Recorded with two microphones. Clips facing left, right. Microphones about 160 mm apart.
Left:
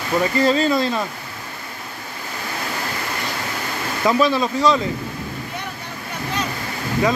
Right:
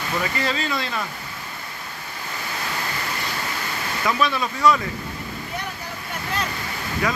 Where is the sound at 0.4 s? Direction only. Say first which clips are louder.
Left 9 dB; 35° left (ahead or behind).